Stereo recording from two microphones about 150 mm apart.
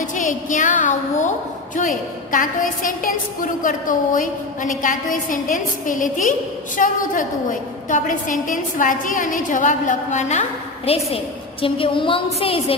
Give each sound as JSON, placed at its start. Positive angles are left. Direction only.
{"t": 0.0, "sound": "a woman's voice", "side_deg": 55}
{"t": 11.6, "sound": "a woman's voice", "side_deg": 35}